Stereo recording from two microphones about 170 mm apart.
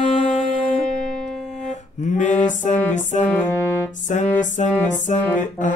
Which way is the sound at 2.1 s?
45° left (ahead or behind).